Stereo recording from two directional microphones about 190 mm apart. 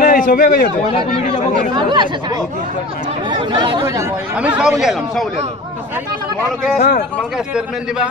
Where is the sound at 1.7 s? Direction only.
25° right (ahead or behind).